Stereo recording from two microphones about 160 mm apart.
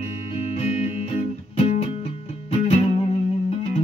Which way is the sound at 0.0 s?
40° left (ahead or behind).